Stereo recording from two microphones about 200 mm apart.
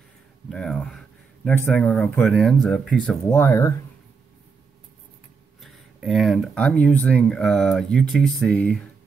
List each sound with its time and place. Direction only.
0.5 s speech: 5° left (ahead or behind)
3.3 s speech: 15° left (ahead or behind)
5.6 s speech: centre (ahead or behind)